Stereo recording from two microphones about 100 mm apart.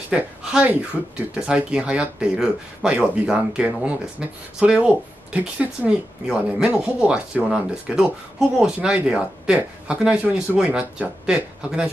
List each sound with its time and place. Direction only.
0.1 s speech: 10° right (ahead or behind)